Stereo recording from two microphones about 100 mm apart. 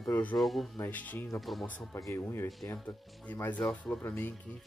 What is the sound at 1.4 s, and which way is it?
Speech, centre (ahead or behind).